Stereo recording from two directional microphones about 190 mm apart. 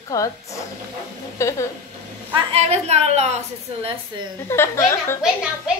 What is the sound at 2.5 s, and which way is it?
Speech, 35° right (ahead or behind).